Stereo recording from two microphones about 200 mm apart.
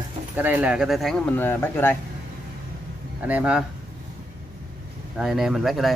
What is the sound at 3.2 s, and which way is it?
Speech, 5° right (ahead or behind).